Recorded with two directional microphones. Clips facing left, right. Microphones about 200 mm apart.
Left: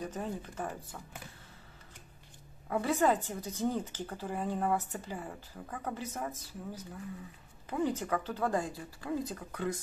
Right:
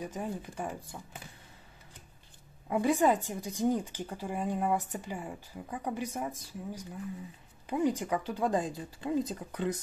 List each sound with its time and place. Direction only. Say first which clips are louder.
0.0 s a woman's voice: right 1 dB; 10° right (ahead or behind)
2.7 s a woman's voice: right 2 dB; 15° right (ahead or behind)